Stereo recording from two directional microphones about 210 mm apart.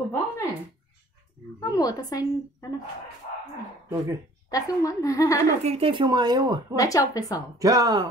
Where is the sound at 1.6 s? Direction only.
15° left (ahead or behind).